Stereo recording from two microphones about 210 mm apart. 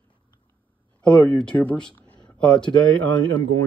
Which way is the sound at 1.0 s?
5° left (ahead or behind).